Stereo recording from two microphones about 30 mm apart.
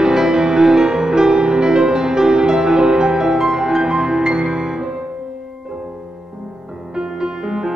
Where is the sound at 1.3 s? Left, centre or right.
Right; by 3.8 s centre.